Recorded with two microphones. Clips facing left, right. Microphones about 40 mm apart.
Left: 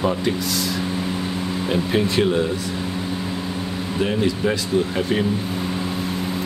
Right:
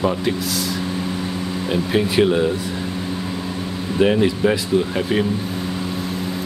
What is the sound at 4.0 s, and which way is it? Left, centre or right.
Speech, centre.